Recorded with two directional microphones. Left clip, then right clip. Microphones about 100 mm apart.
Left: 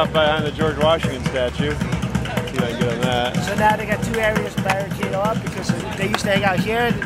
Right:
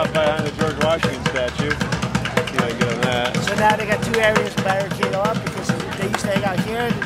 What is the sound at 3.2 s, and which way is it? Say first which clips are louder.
Speech: right 1 dB; centre (ahead or behind).